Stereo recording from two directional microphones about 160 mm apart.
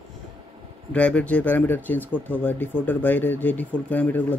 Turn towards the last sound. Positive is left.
turn(degrees=10)  # may be behind; listen again after turning